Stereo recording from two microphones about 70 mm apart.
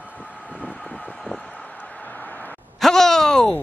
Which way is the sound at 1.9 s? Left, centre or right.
Left.